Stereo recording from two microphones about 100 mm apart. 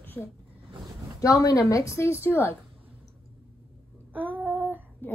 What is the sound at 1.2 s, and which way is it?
A woman's voice, 35° left (ahead or behind).